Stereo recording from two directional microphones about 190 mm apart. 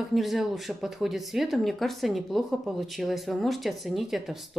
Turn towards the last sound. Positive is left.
turn(degrees=0)  # may be behind; listen again after turning